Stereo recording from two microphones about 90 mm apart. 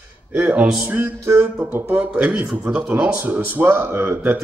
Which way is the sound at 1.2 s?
35° right (ahead or behind).